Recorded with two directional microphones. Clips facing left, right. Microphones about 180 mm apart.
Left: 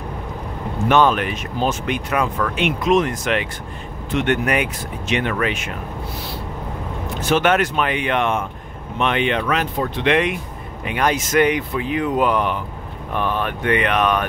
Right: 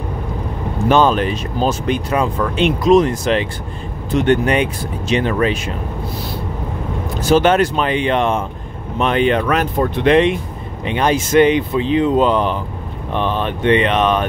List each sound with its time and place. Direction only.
0.8 s speech: 30° right (ahead or behind)
7.2 s speech: 35° right (ahead or behind)
10.0 s speech: 30° right (ahead or behind)